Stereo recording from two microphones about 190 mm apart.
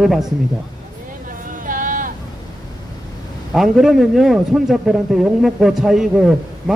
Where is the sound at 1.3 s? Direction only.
45° right (ahead or behind).